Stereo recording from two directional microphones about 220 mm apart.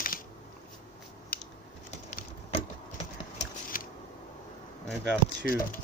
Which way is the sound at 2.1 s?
30° left (ahead or behind).